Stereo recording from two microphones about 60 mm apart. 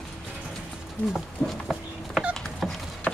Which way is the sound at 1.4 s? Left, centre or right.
Centre.